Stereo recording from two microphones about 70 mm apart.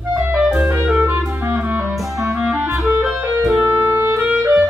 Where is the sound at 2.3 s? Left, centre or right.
Centre.